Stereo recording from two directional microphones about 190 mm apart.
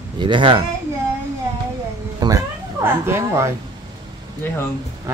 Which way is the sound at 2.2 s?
20° right (ahead or behind).